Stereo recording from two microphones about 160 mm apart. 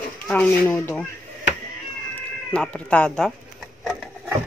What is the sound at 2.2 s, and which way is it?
Speech, 5° left (ahead or behind).